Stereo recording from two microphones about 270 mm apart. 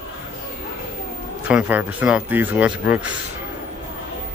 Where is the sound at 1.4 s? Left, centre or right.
Centre.